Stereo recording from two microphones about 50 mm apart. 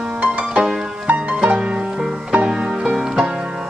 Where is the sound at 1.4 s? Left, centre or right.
Right.